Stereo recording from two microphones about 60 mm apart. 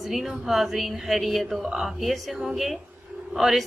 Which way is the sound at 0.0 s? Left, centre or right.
Centre.